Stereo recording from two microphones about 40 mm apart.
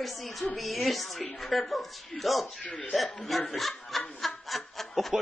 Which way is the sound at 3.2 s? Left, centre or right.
Centre.